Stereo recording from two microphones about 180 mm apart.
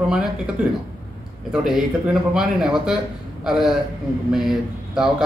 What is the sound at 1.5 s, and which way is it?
A man's voice, 5° right (ahead or behind).